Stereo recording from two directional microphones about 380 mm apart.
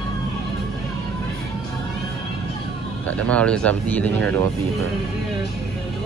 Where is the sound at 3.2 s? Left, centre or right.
Centre.